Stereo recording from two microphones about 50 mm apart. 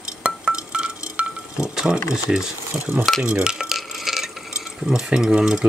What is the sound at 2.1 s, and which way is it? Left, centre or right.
Speech, centre.